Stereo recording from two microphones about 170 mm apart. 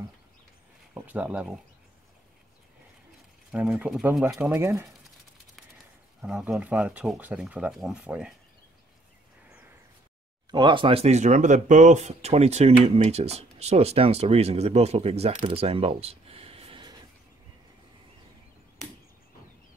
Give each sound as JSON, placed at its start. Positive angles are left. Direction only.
{"t": 0.9, "sound": "speech", "side_deg": -10}
{"t": 3.5, "sound": "speech", "side_deg": -5}
{"t": 6.2, "sound": "speech", "side_deg": -5}
{"t": 10.5, "sound": "speech", "side_deg": -30}